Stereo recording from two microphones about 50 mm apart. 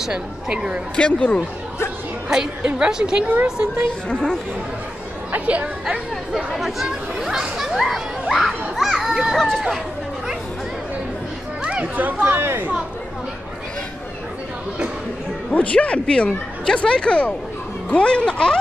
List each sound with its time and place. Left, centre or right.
0.0 s speech: centre
0.9 s speech: left
2.3 s speech: centre
5.4 s speech: right
6.5 s speech: centre
7.2 s children playing: centre
9.3 s speech: centre
11.7 s speech: right
15.5 s speech: left